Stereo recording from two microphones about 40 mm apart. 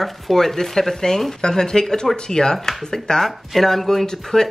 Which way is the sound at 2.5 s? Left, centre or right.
Centre.